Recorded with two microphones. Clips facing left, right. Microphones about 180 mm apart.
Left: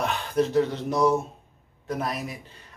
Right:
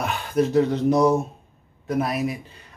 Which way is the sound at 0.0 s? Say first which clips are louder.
Right 2 dB; 10° right (ahead or behind).